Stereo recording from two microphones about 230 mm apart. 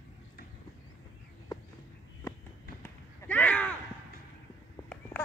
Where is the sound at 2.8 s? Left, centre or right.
Centre.